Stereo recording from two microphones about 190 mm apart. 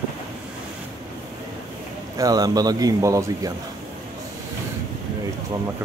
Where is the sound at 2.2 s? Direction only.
20° right (ahead or behind).